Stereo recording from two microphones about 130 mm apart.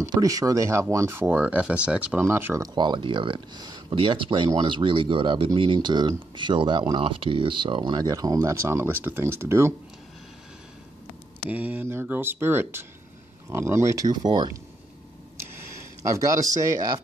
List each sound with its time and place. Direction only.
0.0 s speech: 25° right (ahead or behind)
2.7 s speech: 35° right (ahead or behind)
11.5 s speech: 15° right (ahead or behind); by 14.6 s 35° right (ahead or behind)
16.0 s speech: 25° right (ahead or behind)